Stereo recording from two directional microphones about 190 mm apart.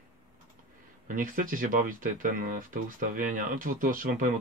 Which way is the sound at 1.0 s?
45° right (ahead or behind).